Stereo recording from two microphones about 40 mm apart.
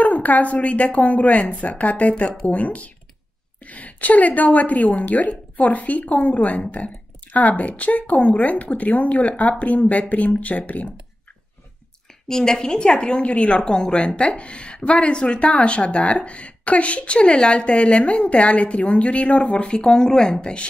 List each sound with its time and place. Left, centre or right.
0.0 s speech: left
12.3 s speech: centre; by 13.6 s left
13.6 s speech: centre; by 19.4 s left
19.4 s speech: left